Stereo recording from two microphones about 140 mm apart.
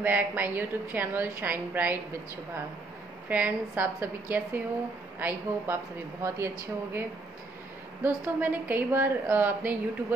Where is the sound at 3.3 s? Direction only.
15° right (ahead or behind).